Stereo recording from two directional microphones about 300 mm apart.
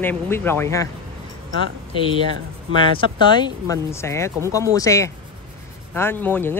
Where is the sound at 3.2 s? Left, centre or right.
Centre.